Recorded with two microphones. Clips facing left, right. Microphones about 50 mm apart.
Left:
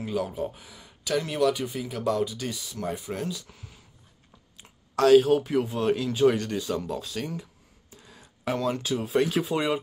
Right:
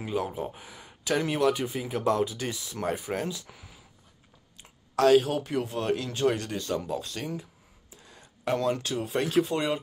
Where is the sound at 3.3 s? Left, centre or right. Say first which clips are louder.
Left 1 dB; centre.